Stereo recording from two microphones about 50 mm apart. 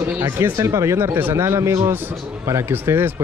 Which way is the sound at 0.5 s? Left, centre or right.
Right.